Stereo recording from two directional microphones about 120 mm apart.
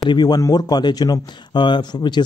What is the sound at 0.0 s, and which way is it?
Speech, 35° left (ahead or behind).